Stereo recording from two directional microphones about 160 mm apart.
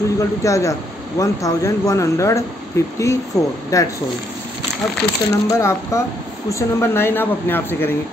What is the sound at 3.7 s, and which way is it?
Speech, 20° left (ahead or behind).